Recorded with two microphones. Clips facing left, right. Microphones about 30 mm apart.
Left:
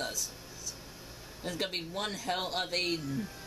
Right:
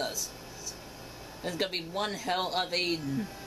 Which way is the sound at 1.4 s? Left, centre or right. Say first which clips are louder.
Right 3 dB; centre.